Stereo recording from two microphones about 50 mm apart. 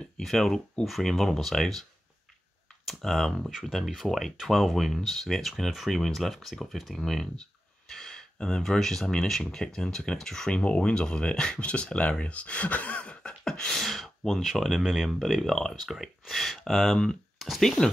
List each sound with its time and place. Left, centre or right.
0.2 s speech: centre
2.9 s speech: centre
10.5 s speech: left; by 17.9 s centre